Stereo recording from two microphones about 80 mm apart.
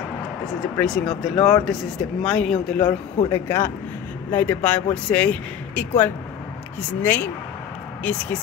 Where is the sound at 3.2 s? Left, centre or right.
Left.